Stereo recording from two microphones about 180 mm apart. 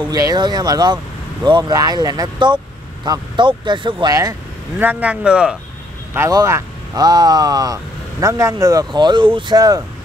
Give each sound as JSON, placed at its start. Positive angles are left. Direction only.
{"t": 0.0, "sound": "speech", "side_deg": -20}
{"t": 6.1, "sound": "speech", "side_deg": -15}